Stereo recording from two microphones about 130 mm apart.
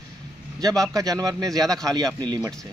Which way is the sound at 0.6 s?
30° right (ahead or behind).